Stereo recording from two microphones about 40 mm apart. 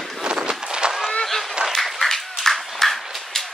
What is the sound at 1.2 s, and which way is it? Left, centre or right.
Speech, centre.